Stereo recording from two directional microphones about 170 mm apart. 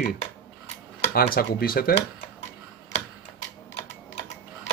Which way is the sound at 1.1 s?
60° left (ahead or behind).